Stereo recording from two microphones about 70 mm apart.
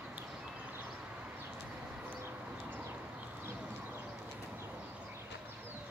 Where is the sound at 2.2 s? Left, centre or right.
Right.